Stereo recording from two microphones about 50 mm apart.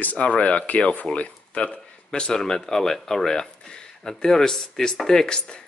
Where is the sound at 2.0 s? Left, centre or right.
Centre.